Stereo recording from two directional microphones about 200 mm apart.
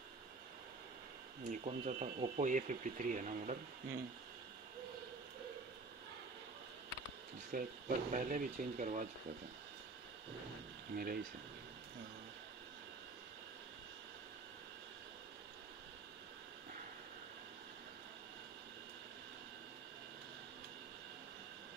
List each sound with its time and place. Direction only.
1.5 s speech: 35° right (ahead or behind)
7.5 s speech: 45° right (ahead or behind)
11.0 s speech: 50° right (ahead or behind)